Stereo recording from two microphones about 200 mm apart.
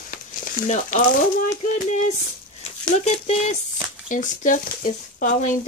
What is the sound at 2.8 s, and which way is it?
Speech, 30° left (ahead or behind).